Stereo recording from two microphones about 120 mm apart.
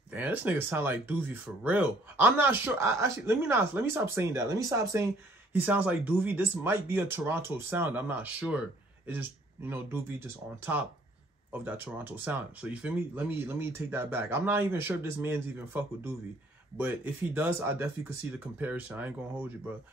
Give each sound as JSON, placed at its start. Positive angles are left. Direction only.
{"t": 0.1, "sound": "speech", "side_deg": -15}
{"t": 5.5, "sound": "speech", "side_deg": -15}